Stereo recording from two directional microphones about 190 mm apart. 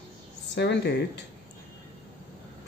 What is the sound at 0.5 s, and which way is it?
Speech, 65° left (ahead or behind).